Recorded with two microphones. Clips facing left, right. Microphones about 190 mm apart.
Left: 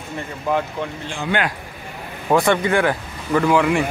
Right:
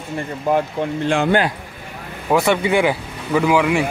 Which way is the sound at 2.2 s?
10° right (ahead or behind).